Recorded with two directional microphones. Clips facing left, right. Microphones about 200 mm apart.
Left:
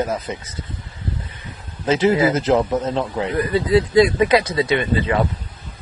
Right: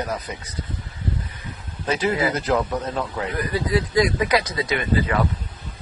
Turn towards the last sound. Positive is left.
turn(degrees=25)  # may be behind; listen again after turning